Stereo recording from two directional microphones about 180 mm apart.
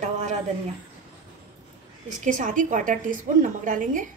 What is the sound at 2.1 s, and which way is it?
A woman's voice, 45° right (ahead or behind).